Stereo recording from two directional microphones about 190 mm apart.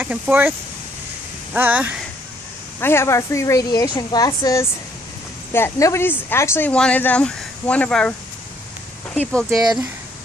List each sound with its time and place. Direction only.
0.0 s speech: 10° right (ahead or behind)
2.8 s speech: 15° left (ahead or behind)
9.1 s speech: 5° left (ahead or behind)